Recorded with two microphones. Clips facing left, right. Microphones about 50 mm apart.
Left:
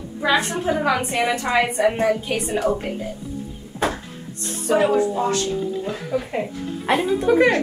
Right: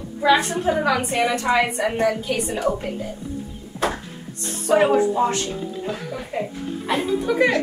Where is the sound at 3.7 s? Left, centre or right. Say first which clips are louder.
Left 1 dB; left.